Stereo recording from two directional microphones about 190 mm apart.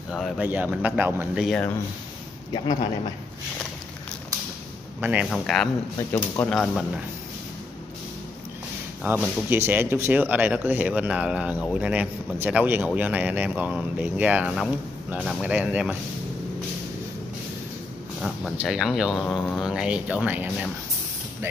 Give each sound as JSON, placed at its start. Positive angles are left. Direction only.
{"t": 0.1, "sound": "a man's voice", "side_deg": 0}
{"t": 1.4, "sound": "speech", "side_deg": 0}
{"t": 2.5, "sound": "speech", "side_deg": 25}
{"t": 5.0, "sound": "a man's voice", "side_deg": -10}
{"t": 5.3, "sound": "speech", "side_deg": 5}
{"t": 9.5, "sound": "a man's voice", "side_deg": -10}
{"t": 18.2, "sound": "speech", "side_deg": 0}